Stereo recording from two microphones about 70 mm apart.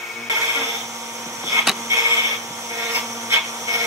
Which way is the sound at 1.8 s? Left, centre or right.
Right.